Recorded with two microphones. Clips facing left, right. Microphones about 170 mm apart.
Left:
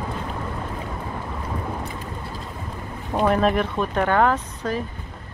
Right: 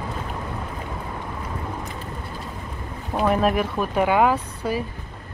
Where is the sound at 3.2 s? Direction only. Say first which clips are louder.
Left 1 dB; 5° right (ahead or behind).